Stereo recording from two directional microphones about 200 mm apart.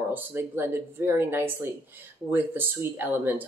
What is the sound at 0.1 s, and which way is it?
Speech, 10° right (ahead or behind).